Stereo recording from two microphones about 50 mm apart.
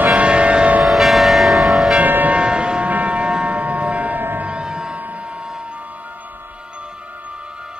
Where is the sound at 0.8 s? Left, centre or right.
Centre.